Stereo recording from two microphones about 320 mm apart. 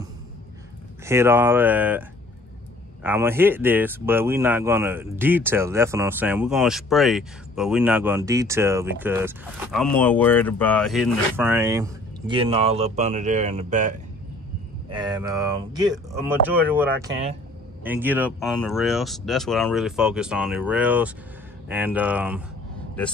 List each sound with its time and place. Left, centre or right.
1.0 s speech: centre